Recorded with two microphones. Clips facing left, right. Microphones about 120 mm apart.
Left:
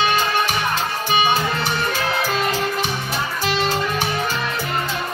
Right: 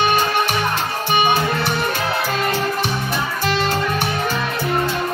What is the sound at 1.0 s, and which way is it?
Music, 60° right (ahead or behind).